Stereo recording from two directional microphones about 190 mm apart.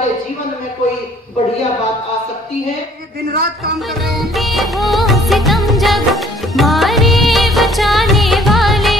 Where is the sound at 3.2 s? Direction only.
55° right (ahead or behind).